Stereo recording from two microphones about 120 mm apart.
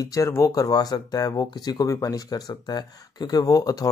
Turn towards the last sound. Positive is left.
turn(degrees=30)  # may be behind; listen again after turning